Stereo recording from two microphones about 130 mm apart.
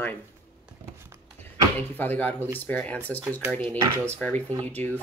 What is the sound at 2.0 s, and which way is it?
Speech, 15° left (ahead or behind).